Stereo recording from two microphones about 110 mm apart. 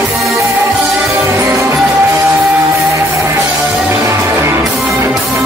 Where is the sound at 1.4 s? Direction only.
25° right (ahead or behind).